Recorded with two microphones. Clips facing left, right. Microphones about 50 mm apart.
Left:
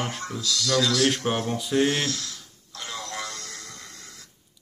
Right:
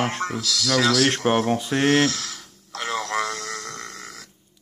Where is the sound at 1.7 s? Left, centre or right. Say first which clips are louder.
Right 3 dB; right.